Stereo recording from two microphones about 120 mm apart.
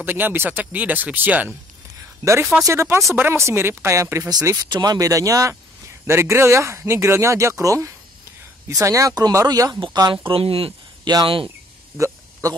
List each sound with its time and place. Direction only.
0.0 s speech: 15° right (ahead or behind); by 9.8 s 35° right (ahead or behind)
10.2 s speech: 50° right (ahead or behind)
12.0 s a sound: 25° right (ahead or behind)